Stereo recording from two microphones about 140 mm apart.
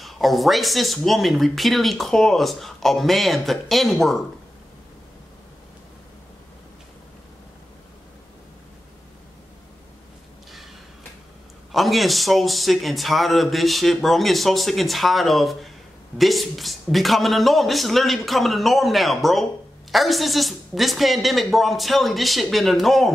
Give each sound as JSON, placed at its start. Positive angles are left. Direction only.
{"t": 0.0, "sound": "speech", "side_deg": 0}
{"t": 11.7, "sound": "speech", "side_deg": 0}